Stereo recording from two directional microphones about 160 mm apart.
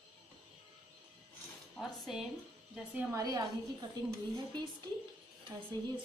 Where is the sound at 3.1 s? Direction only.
20° right (ahead or behind).